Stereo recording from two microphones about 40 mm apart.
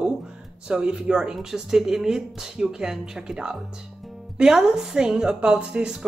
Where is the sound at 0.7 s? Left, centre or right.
Right.